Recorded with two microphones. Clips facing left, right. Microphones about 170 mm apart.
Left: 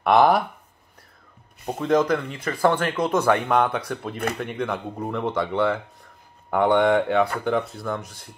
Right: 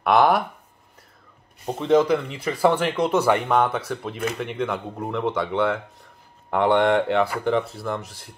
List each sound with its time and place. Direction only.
0.0 s speech: centre (ahead or behind)
1.7 s speech: 5° right (ahead or behind)